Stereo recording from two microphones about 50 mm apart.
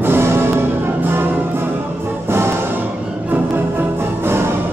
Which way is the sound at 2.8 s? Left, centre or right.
Right.